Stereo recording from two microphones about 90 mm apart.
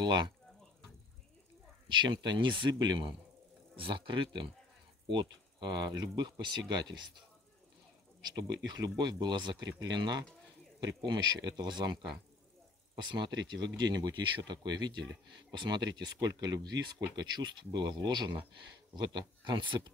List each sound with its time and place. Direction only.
0.0 s speech: 55° right (ahead or behind)
1.9 s speech: 55° right (ahead or behind)
3.7 s speech: 70° right (ahead or behind); by 7.0 s 55° right (ahead or behind)
8.2 s speech: 50° right (ahead or behind)